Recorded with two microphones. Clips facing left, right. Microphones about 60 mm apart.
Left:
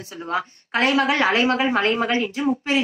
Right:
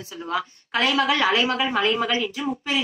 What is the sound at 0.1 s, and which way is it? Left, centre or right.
A woman's voice, left.